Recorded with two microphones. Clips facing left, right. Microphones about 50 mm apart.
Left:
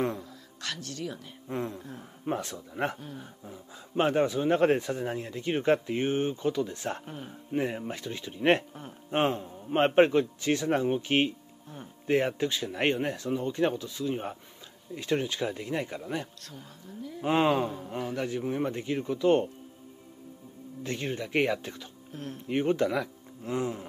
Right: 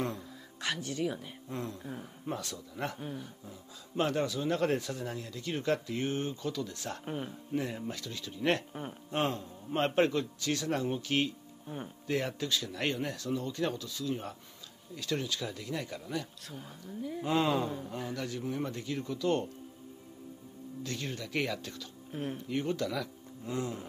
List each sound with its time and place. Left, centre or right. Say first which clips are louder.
0.6 s speech: right 3 dB; centre
1.5 s speech: left 5 dB; left
16.4 s speech: right 1 dB; centre
17.2 s speech: left 5 dB; left
17.6 s a man's voice: left 2 dB; centre
17.9 s speech: left 5 dB; left
20.8 s speech: left 6 dB; left
22.1 s speech: right 3 dB; centre
22.5 s speech: left 8 dB; left